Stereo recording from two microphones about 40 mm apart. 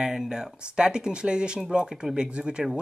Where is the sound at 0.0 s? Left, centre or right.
Centre.